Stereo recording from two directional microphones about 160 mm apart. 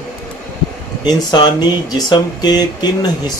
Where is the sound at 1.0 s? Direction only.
25° left (ahead or behind).